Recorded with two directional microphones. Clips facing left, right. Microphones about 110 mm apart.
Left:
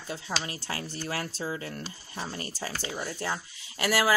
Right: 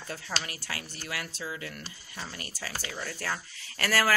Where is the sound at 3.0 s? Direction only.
20° left (ahead or behind).